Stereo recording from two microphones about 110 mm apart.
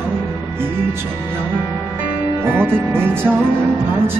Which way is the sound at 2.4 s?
20° right (ahead or behind).